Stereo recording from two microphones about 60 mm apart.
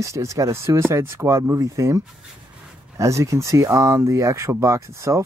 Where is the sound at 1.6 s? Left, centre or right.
Right.